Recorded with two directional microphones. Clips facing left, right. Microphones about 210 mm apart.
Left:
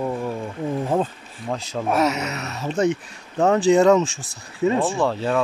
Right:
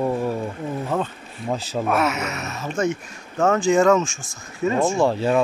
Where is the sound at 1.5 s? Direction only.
5° right (ahead or behind).